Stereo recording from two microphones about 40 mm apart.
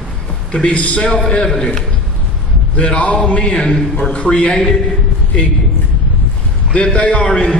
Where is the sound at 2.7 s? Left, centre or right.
Left.